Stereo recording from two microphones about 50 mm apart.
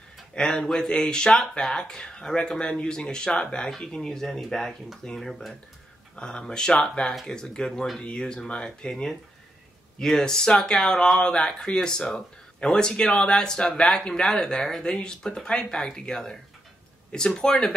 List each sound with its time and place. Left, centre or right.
0.3 s speech: centre
6.1 s speech: centre